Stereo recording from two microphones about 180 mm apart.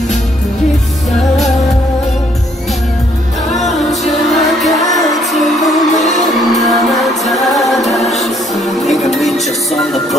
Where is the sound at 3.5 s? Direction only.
Centre (ahead or behind).